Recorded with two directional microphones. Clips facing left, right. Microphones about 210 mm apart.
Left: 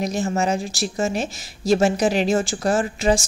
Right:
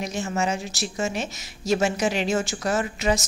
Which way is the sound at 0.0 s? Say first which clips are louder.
Left 4 dB; 35° left (ahead or behind).